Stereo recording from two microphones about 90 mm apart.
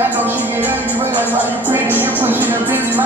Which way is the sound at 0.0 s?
20° right (ahead or behind).